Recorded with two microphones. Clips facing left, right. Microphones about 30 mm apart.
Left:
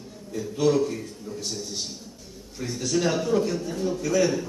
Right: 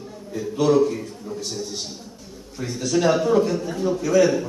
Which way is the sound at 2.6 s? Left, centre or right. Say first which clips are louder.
Right 4 dB; centre.